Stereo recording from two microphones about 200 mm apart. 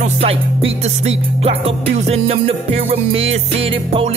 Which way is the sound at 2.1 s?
30° right (ahead or behind).